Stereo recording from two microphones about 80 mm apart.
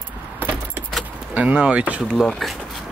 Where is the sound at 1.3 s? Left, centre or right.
Centre.